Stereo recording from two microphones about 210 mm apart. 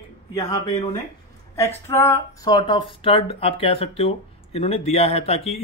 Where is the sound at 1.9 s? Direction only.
10° left (ahead or behind).